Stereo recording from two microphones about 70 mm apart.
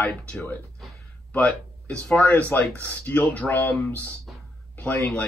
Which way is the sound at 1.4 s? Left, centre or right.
Centre.